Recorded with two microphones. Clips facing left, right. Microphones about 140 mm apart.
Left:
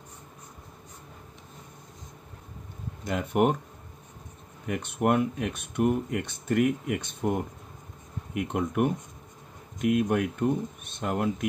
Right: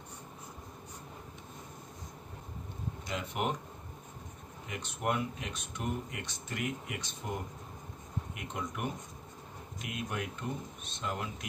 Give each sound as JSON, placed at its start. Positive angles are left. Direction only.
{"t": 3.0, "sound": "speech", "side_deg": 50}
{"t": 4.6, "sound": "speech", "side_deg": 55}
{"t": 8.4, "sound": "speech", "side_deg": 55}